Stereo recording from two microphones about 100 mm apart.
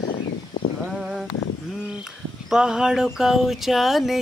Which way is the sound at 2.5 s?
5° right (ahead or behind).